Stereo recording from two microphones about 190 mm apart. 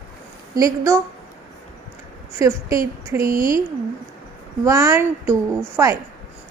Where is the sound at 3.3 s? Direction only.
45° right (ahead or behind).